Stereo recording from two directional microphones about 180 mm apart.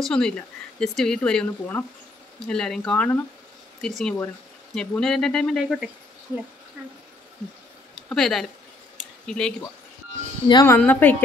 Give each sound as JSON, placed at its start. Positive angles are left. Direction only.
{"t": 0.0, "sound": "a woman's voice", "side_deg": 5}
{"t": 7.9, "sound": "speech", "side_deg": 0}
{"t": 10.5, "sound": "speech", "side_deg": 20}
{"t": 10.8, "sound": "a woman's voice", "side_deg": 10}